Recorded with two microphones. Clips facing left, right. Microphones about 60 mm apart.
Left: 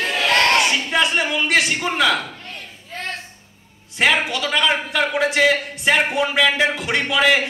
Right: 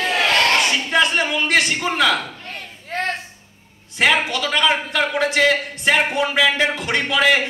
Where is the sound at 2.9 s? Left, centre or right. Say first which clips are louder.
Right 7 dB; right.